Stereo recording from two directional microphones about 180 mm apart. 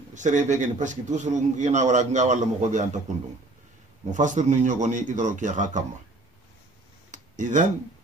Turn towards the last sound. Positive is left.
turn(degrees=-45)  # may be behind; listen again after turning